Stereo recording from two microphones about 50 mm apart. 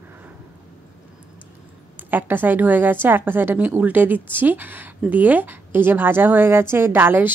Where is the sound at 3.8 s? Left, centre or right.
Right.